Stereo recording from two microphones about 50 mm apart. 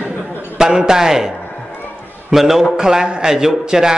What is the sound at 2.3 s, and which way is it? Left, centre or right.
A man's voice, centre.